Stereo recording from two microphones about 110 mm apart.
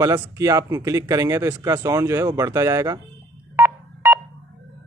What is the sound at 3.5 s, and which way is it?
Telephone dialing, 20° right (ahead or behind).